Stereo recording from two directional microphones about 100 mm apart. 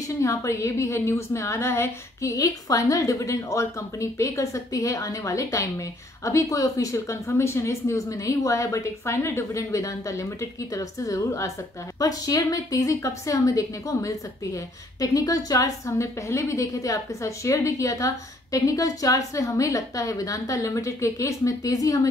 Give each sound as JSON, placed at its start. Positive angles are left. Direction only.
{"t": 0.2, "sound": "a woman's voice", "side_deg": 30}